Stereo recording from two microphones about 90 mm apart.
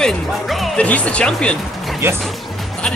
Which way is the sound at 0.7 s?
15° left (ahead or behind).